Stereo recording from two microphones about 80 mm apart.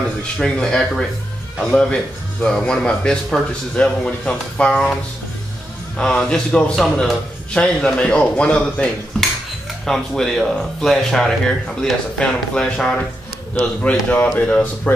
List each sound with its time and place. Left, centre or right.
0.4 s a man's voice: centre
5.9 s a man's voice: centre